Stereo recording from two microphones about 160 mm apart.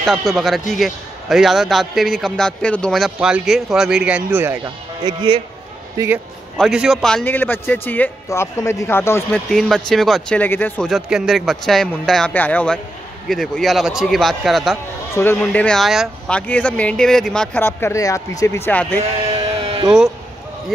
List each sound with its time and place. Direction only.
0.0 s a man's voice: centre (ahead or behind)
5.0 s speech: 30° right (ahead or behind)
6.6 s speech: 5° right (ahead or behind); by 9.2 s 15° left (ahead or behind)
9.3 s a man's voice: centre (ahead or behind)
10.9 s a man's voice: 5° right (ahead or behind)
15.1 s speech: 10° left (ahead or behind)